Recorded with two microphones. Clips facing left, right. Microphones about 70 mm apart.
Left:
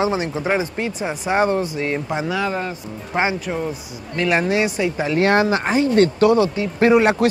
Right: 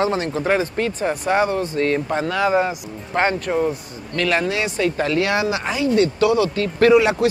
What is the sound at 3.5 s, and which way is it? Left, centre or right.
Speech, centre.